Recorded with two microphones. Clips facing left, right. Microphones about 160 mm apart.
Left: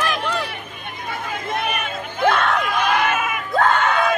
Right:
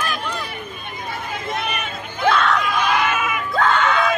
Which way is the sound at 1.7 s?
55° left (ahead or behind).